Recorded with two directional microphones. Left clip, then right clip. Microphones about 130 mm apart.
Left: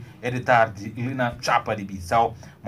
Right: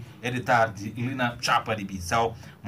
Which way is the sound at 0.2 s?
55° left (ahead or behind).